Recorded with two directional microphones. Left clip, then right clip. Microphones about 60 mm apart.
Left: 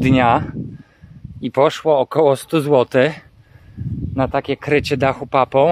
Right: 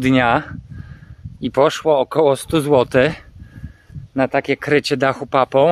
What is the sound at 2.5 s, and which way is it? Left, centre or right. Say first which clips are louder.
Speech: even; right.